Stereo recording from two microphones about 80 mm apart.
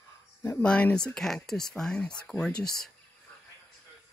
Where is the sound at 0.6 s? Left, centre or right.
Centre.